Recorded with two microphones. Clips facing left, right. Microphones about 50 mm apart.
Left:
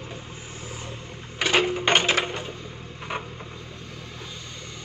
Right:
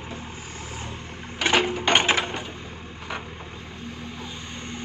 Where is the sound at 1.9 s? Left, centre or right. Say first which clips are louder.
Right 2 dB; right.